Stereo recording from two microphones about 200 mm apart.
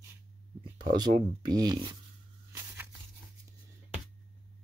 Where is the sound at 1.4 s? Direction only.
20° right (ahead or behind).